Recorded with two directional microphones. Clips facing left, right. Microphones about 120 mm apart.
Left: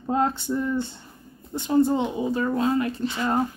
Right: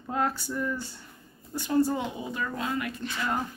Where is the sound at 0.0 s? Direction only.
25° left (ahead or behind).